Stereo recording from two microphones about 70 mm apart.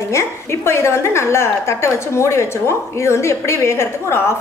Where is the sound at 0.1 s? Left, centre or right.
Left.